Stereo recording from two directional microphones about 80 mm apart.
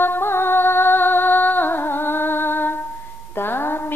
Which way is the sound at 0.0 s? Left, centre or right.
Left.